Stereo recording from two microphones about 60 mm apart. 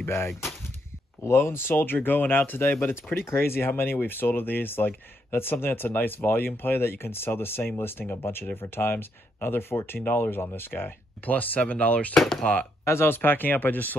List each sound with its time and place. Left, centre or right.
0.0 s speech: left
12.2 s speech: centre
12.8 s speech: left